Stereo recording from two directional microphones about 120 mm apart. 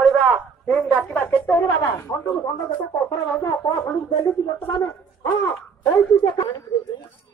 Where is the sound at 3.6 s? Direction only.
35° left (ahead or behind).